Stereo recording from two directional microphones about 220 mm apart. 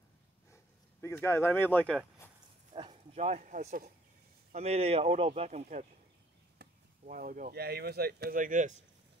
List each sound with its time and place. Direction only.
1.0 s speech: 10° left (ahead or behind)
2.7 s a man's voice: 20° right (ahead or behind)